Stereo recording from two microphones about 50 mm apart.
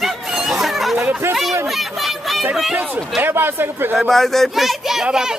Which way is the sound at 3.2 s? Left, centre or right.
Right.